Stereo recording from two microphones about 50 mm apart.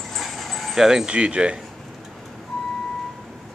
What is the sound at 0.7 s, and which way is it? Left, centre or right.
Speech, centre.